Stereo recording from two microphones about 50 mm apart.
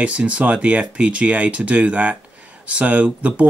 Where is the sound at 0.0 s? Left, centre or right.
Right.